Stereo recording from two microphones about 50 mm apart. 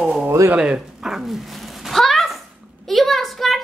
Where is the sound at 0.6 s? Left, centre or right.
Centre.